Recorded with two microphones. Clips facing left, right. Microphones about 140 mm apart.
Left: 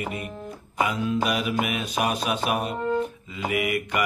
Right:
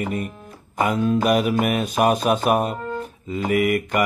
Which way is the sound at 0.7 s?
45° right (ahead or behind).